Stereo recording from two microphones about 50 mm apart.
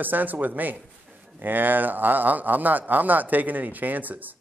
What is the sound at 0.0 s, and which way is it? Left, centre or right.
Speech, right.